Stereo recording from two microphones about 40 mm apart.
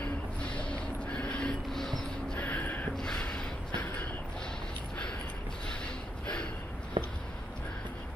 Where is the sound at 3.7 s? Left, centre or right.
Left.